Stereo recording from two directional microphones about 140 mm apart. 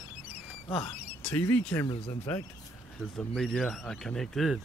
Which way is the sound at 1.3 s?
15° left (ahead or behind).